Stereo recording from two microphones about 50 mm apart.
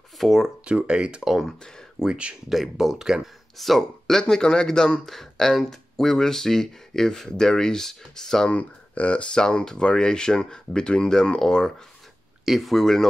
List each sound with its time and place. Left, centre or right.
0.2 s speech: centre
0.7 s speech: right
2.5 s speech: centre
8.5 s speech: left; by 11.7 s centre
12.4 s speech: centre